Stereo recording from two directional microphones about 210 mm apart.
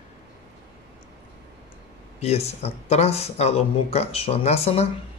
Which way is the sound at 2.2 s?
30° left (ahead or behind).